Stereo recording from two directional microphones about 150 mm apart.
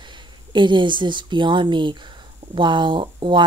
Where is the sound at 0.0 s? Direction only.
30° right (ahead or behind).